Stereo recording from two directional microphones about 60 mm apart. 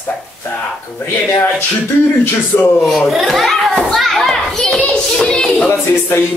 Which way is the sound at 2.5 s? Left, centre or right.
Left.